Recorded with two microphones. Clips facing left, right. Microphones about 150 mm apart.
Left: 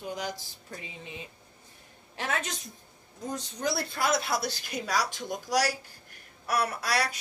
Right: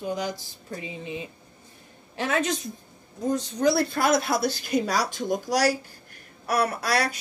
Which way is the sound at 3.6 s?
70° right (ahead or behind).